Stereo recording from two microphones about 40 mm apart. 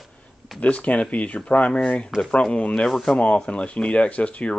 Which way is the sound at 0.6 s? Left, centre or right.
Left.